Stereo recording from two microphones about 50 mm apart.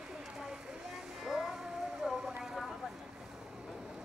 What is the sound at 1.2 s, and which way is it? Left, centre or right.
Music, centre.